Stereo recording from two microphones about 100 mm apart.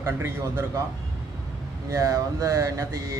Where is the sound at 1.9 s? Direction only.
35° right (ahead or behind).